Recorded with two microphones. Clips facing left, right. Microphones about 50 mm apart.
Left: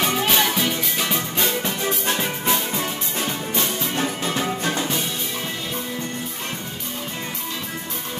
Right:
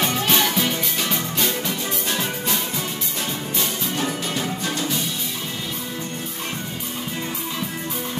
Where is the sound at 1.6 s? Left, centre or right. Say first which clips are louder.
Left 2 dB; left.